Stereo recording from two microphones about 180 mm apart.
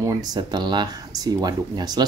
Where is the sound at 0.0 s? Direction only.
20° right (ahead or behind).